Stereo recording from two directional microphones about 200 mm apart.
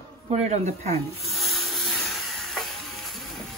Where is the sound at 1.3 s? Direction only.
Centre (ahead or behind).